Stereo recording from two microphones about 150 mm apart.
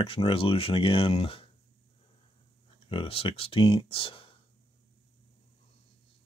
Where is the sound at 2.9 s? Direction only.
40° left (ahead or behind).